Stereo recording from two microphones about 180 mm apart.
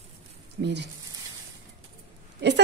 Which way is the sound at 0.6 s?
75° right (ahead or behind).